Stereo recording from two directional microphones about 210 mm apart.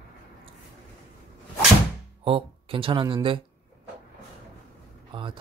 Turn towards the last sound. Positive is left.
turn(degrees=-25)  # may be behind; listen again after turning